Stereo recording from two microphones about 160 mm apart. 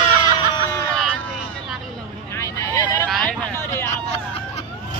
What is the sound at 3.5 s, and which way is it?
Vehicle, 15° left (ahead or behind).